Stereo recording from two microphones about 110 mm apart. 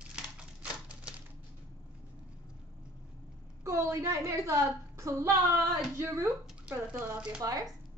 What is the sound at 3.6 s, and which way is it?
A woman's voice, 25° right (ahead or behind).